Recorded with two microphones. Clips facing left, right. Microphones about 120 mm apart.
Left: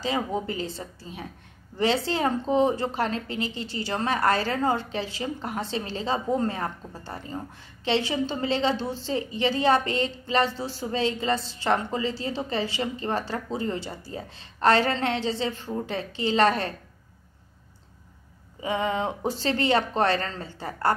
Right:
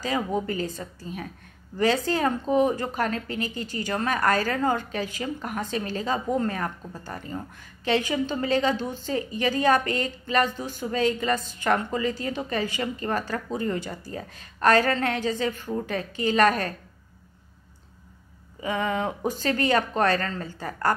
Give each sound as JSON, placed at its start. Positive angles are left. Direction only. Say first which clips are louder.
{"t": 0.0, "sound": "a woman's voice", "louder": "right 1 dB", "side_deg": 25}
{"t": 18.6, "sound": "a woman's voice", "louder": "even", "side_deg": 25}